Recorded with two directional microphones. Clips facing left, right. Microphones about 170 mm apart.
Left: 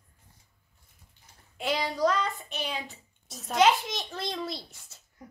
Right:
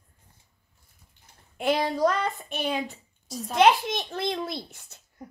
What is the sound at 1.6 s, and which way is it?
Child singing, 55° right (ahead or behind).